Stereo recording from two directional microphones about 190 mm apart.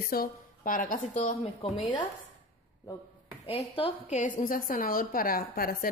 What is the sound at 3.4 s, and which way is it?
Speech, 30° left (ahead or behind).